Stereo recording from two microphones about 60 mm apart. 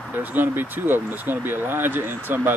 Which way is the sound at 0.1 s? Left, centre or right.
Right.